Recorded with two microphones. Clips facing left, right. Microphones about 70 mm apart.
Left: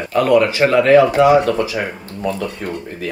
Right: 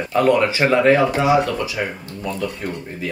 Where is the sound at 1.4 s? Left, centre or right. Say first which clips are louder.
Left 5 dB; left.